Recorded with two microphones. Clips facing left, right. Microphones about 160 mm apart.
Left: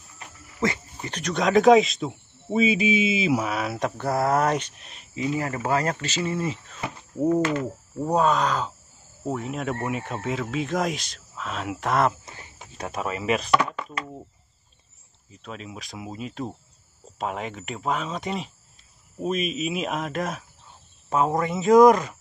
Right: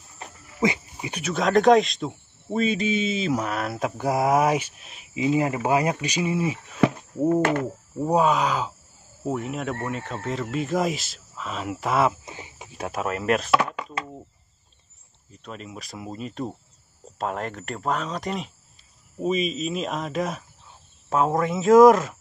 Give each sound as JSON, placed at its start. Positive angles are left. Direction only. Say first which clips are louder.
{"t": 0.2, "sound": "a sound", "louder": "right 4 dB", "side_deg": -30}
{"t": 0.6, "sound": "speech", "louder": "right 2 dB", "side_deg": -15}
{"t": 4.0, "sound": "speech", "louder": "right 2 dB", "side_deg": -15}
{"t": 5.1, "sound": "speech", "louder": "right 4 dB", "side_deg": -20}
{"t": 12.3, "sound": "cricket", "louder": "right 4 dB", "side_deg": -15}
{"t": 12.7, "sound": "chopping", "louder": "right 2 dB", "side_deg": -5}
{"t": 15.3, "sound": "speech", "louder": "even", "side_deg": 0}